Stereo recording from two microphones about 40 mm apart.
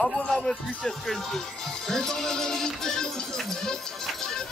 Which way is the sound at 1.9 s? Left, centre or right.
Centre.